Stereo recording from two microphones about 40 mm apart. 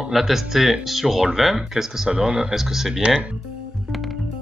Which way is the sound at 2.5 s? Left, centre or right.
Centre.